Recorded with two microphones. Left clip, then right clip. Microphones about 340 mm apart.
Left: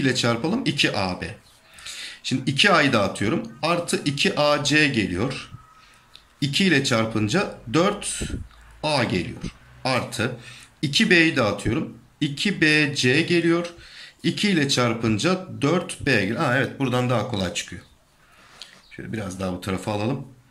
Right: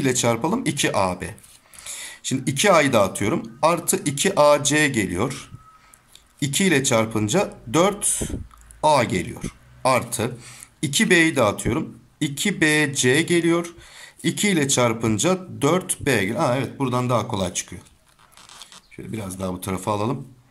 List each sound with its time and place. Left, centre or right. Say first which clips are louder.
0.0 s speech: right 1 dB; centre
19.1 s speech: even; centre